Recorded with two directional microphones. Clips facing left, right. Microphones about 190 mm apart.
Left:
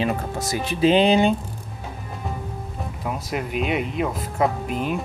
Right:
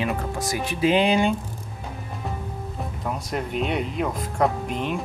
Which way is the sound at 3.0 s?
5° left (ahead or behind).